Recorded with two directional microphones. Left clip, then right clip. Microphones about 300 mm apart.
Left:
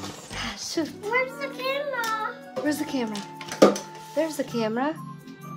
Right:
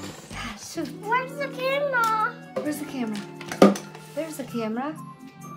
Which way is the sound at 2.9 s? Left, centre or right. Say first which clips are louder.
Left 3 dB; left.